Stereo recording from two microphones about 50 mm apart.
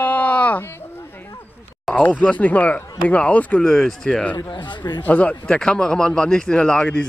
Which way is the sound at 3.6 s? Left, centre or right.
Centre.